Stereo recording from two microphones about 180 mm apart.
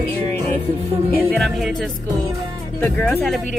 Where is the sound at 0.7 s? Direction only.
35° right (ahead or behind).